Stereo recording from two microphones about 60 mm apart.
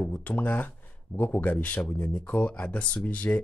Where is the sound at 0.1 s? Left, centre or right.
Left.